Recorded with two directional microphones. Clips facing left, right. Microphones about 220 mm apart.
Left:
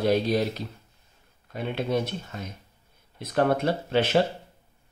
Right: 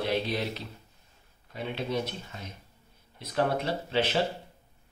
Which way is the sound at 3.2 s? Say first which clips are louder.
Left 5 dB; 50° left (ahead or behind).